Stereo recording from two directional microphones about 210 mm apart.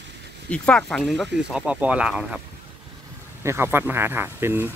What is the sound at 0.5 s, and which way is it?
Speech, 5° left (ahead or behind).